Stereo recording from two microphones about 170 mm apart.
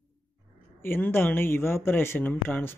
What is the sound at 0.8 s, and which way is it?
Speech, 10° left (ahead or behind).